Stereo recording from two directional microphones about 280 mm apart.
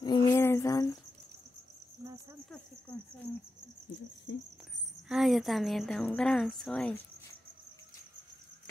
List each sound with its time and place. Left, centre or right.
0.0 s a sound: centre
4.3 s speech: left
5.0 s speech: centre